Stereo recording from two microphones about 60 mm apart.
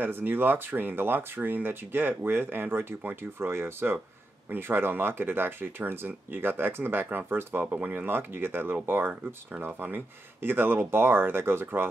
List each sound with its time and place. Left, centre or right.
0.0 s speech: right